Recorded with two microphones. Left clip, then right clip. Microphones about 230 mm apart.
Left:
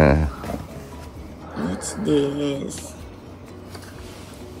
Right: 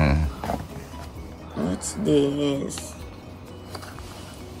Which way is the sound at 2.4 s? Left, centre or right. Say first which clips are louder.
Even; right.